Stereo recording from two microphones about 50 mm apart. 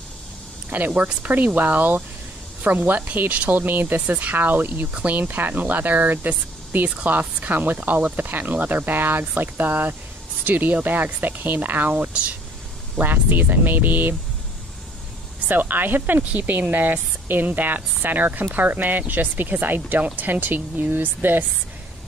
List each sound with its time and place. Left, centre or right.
0.7 s speech: right
11.9 s speech: right
13.0 s speech: right
15.4 s speech: right